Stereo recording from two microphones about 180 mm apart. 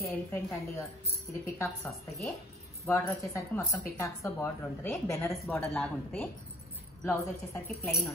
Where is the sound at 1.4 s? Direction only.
15° left (ahead or behind).